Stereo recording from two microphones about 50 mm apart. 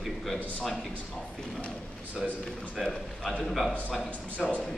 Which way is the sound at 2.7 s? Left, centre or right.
Centre.